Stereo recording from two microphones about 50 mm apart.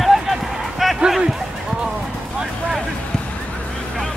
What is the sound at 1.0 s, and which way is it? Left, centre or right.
Speech, centre.